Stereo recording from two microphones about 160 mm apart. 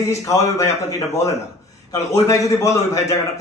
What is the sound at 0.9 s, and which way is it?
A man's voice, 20° left (ahead or behind).